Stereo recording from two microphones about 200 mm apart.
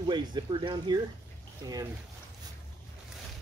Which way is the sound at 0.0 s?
20° right (ahead or behind).